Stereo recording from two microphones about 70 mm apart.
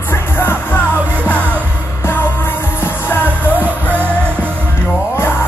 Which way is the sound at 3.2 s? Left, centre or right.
Right.